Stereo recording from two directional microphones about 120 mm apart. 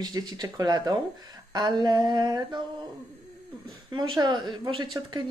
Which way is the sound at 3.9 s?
40° right (ahead or behind).